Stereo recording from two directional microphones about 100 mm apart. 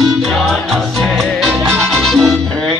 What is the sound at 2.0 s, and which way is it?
Music, 5° left (ahead or behind).